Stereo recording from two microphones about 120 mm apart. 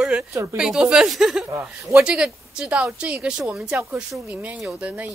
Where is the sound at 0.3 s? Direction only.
25° right (ahead or behind).